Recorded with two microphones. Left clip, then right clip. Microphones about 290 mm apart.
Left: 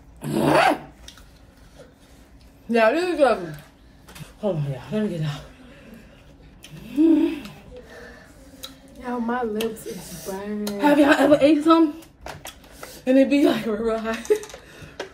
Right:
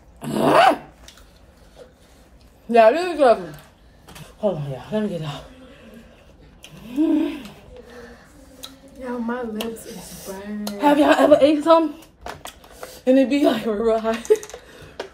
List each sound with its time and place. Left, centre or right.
0.2 s dog: centre
2.7 s a woman's voice: centre
4.9 s a woman's voice: centre
6.6 s bird: centre
9.0 s speech: centre
9.6 s a woman's voice: centre
12.8 s speech: centre